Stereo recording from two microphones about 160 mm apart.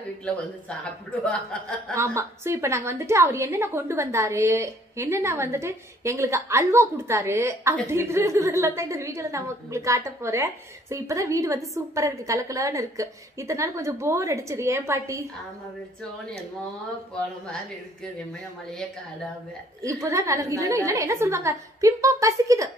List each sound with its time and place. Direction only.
1.2 s speech: 5° left (ahead or behind)
2.0 s a woman's voice: 15° right (ahead or behind)
19.8 s a woman's voice: 20° right (ahead or behind)